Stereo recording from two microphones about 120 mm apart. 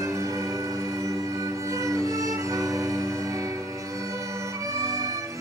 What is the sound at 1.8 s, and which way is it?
Music, 30° right (ahead or behind).